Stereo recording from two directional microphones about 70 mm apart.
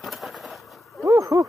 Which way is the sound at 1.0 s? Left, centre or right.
Right.